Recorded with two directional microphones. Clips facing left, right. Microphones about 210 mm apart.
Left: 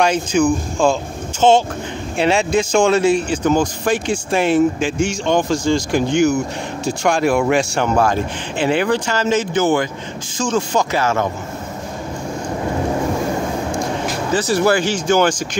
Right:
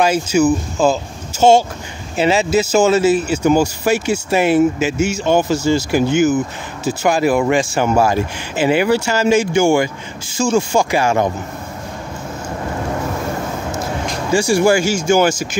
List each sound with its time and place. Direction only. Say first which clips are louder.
0.0 s speech: right 2 dB; 5° right (ahead or behind)
14.3 s speech: right 3 dB; 10° right (ahead or behind)